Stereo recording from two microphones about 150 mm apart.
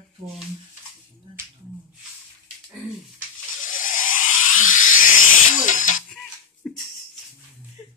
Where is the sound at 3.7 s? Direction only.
65° left (ahead or behind).